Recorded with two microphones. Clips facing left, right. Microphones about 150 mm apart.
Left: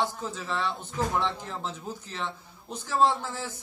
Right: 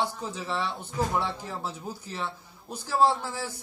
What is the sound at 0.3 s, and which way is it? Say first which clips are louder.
Speech: even; 15° right (ahead or behind).